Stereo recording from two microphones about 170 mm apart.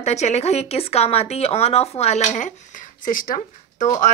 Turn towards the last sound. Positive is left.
turn(degrees=50)  # may be behind; listen again after turning